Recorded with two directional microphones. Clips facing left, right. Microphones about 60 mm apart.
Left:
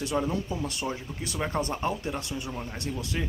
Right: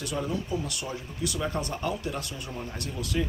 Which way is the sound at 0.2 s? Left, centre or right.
Left.